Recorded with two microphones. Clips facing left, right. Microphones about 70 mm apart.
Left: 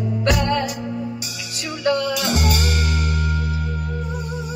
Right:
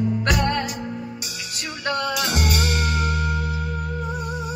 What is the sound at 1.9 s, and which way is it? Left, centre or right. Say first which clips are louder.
Music: left 5 dB; right.